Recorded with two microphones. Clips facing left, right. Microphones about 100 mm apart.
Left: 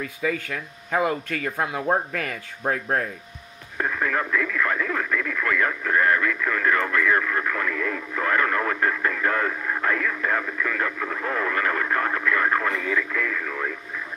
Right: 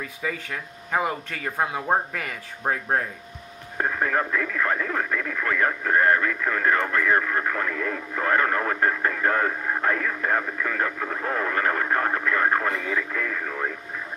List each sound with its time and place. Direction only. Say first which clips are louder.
0.5 s speech: left 1 dB; 20° right (ahead or behind)
3.7 s speech: right 1 dB; 30° right (ahead or behind)